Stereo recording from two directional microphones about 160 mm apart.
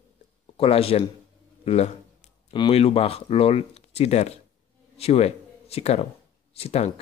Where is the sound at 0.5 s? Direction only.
35° left (ahead or behind).